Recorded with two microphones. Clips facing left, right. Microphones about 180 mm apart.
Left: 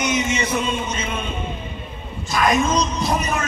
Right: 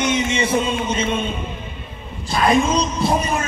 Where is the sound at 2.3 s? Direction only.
30° right (ahead or behind).